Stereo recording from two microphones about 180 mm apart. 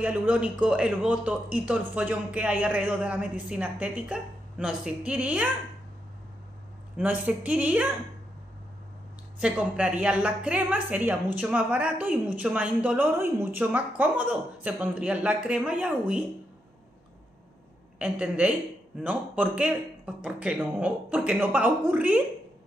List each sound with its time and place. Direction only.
0.0 s a woman's voice: 10° right (ahead or behind)
7.0 s a woman's voice: 10° right (ahead or behind)
9.4 s a woman's voice: 5° right (ahead or behind)
17.9 s a woman's voice: 5° right (ahead or behind)